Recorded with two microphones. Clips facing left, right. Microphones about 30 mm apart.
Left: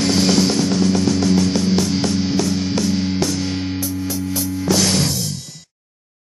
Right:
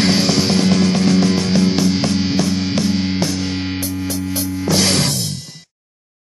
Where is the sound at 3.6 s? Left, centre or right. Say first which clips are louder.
Right 1 dB; right.